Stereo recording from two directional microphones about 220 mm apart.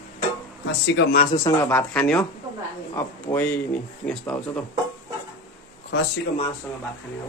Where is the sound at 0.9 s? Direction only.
55° left (ahead or behind).